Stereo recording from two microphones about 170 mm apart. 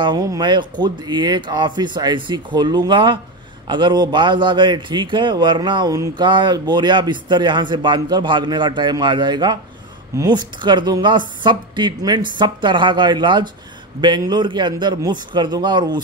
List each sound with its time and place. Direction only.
0.0 s a man's voice: 20° right (ahead or behind)